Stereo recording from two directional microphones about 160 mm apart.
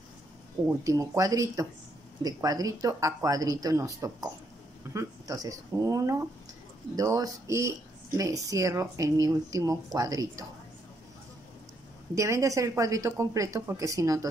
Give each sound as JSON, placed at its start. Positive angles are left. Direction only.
{"t": 0.7, "sound": "speech", "side_deg": -20}
{"t": 12.2, "sound": "speech", "side_deg": -20}